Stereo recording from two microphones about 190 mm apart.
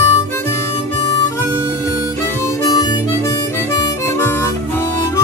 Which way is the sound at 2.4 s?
20° left (ahead or behind).